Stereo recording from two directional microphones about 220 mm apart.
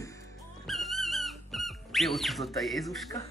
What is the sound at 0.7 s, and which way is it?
Music, centre (ahead or behind).